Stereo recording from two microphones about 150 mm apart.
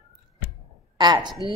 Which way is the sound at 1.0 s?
30° right (ahead or behind).